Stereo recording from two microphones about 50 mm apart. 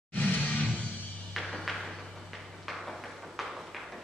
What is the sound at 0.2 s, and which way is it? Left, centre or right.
Music, left.